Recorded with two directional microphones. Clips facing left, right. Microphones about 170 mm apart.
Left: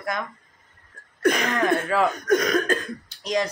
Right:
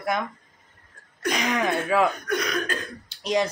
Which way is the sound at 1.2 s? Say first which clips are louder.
Left 6 dB; 55° left (ahead or behind).